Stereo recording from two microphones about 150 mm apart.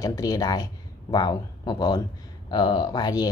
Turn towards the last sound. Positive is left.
turn(degrees=25)  # may be behind; listen again after turning